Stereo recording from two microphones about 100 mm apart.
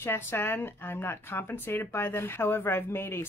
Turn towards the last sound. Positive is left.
turn(degrees=25)  # may be behind; listen again after turning